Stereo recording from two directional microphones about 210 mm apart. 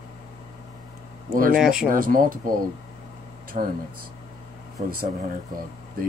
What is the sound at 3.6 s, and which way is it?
Speech, 35° right (ahead or behind).